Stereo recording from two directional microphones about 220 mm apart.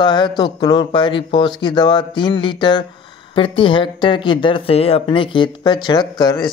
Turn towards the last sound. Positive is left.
turn(degrees=20)  # may be behind; listen again after turning